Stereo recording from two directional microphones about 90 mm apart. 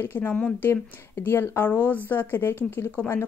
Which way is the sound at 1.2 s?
25° left (ahead or behind).